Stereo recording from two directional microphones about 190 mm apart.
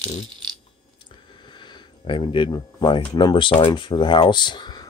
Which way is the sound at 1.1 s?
25° left (ahead or behind).